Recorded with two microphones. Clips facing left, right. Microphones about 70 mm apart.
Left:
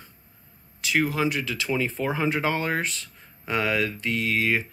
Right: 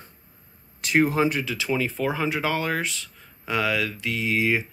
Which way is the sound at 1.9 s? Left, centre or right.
Centre.